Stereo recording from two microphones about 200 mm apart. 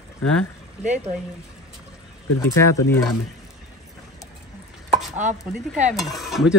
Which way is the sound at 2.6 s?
15° left (ahead or behind).